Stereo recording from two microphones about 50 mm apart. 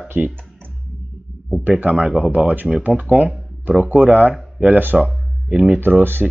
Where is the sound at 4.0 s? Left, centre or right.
Right.